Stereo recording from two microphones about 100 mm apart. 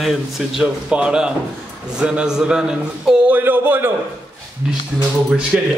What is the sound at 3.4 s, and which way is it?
Speech, 20° right (ahead or behind).